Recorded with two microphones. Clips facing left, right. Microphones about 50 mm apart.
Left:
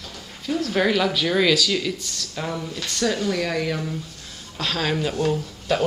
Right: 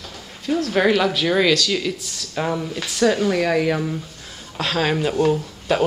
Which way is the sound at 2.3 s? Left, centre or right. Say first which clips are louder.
Right 6 dB; centre.